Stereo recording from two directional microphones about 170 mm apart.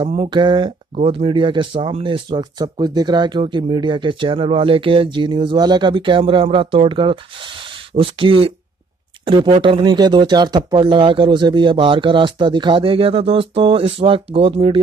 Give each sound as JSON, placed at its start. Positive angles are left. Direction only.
{"t": 0.0, "sound": "speech", "side_deg": -40}
{"t": 0.3, "sound": "speech", "side_deg": -25}